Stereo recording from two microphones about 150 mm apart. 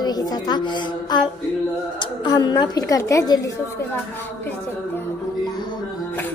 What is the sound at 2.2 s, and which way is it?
A woman's voice, 30° left (ahead or behind).